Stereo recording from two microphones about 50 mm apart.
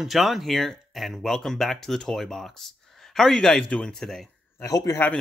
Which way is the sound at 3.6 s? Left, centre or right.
Left.